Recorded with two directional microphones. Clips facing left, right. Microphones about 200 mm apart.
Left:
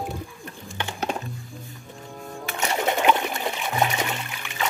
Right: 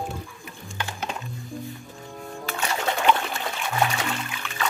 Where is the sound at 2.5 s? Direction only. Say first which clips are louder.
Left 3 dB; 20° left (ahead or behind).